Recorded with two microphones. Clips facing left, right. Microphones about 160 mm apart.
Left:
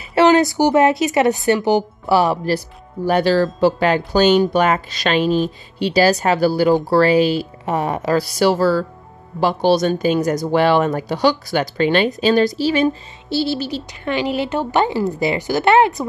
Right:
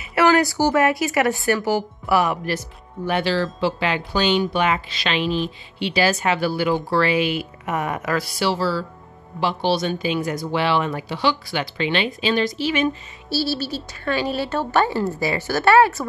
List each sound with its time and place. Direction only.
0.1 s a woman's voice: 25° left (ahead or behind)
13.3 s speech: 20° left (ahead or behind)